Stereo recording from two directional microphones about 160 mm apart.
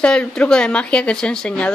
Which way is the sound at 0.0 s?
5° left (ahead or behind).